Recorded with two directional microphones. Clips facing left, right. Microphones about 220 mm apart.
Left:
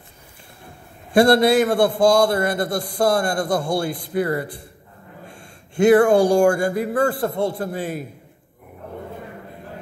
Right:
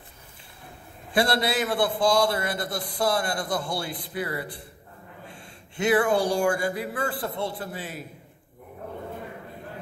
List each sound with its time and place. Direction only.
1.1 s a man's voice: 45° left (ahead or behind)